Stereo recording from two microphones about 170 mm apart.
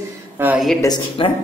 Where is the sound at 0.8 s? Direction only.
30° left (ahead or behind).